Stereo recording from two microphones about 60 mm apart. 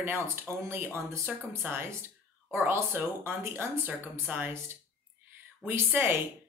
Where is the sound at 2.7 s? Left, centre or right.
Right.